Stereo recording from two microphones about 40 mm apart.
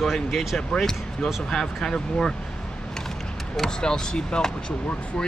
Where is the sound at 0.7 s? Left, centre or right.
Centre.